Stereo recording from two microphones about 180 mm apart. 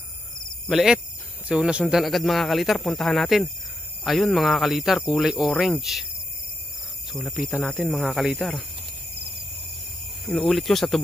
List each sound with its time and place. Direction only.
0.7 s speech: centre (ahead or behind)
7.1 s speech: centre (ahead or behind)
10.5 s speech: centre (ahead or behind)